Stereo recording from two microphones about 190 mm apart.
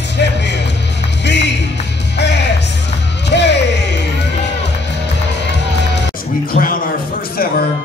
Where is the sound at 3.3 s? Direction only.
65° left (ahead or behind).